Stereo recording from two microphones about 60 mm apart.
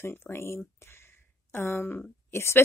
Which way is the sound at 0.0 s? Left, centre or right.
Left.